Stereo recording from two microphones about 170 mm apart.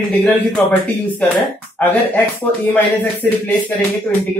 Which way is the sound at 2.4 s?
10° left (ahead or behind).